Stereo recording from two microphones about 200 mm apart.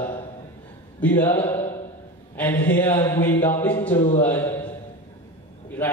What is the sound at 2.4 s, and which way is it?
A man's voice, 10° left (ahead or behind).